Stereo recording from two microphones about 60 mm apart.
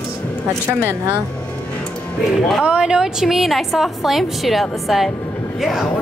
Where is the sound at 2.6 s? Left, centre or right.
Centre.